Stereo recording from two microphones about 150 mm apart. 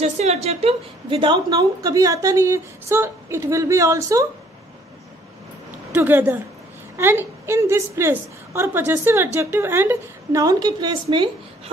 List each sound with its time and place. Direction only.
0.0 s a woman's voice: 45° right (ahead or behind); by 4.3 s 20° right (ahead or behind)
5.9 s a woman's voice: 15° right (ahead or behind); by 11.7 s 35° right (ahead or behind)